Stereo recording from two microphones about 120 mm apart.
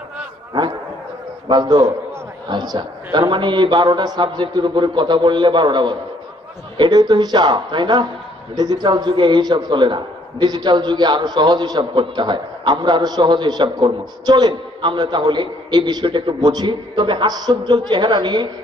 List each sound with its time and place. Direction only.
1.5 s a man's voice: 35° right (ahead or behind)